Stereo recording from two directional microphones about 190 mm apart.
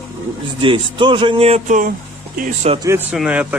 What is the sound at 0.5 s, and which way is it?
Speech, 25° right (ahead or behind).